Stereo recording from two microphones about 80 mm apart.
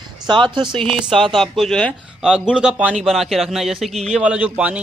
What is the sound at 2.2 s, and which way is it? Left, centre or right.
Speech, centre.